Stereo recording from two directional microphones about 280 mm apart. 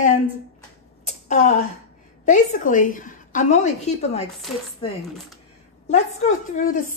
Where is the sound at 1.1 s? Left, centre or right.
Left.